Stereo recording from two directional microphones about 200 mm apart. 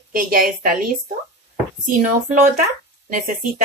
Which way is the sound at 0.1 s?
45° right (ahead or behind).